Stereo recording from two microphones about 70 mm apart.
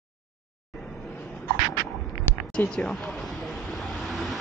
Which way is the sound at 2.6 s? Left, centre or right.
Left.